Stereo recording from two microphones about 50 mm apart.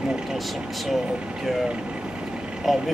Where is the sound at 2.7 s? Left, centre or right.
Centre.